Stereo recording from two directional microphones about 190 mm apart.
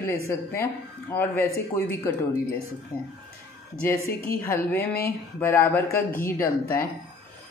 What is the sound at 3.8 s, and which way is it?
A woman's voice, 15° left (ahead or behind).